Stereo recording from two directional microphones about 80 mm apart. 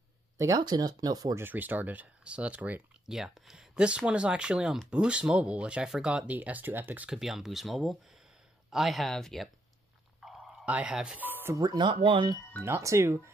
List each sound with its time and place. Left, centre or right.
0.6 s speech: right
1.3 s speech: right
3.1 s speech: centre; by 7.1 s right
7.1 s speech: centre
10.2 s a sound: centre
10.6 s speech: centre
11.1 s speech: right
11.5 s speech: right
11.8 s speech: right
12.6 s speech: right